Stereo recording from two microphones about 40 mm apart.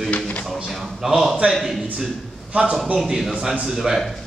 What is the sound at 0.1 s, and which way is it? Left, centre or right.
Music, left.